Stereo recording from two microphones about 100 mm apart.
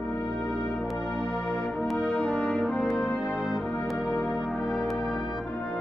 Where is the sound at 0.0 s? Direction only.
5° left (ahead or behind).